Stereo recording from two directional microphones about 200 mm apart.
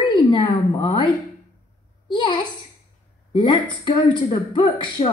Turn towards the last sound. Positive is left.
turn(degrees=25)  # may be behind; listen again after turning